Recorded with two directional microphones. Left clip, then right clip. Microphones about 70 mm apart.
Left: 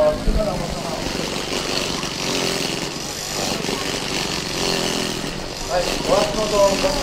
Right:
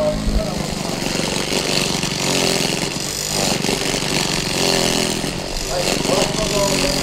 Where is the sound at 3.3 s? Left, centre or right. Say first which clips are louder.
Right 4 dB; right.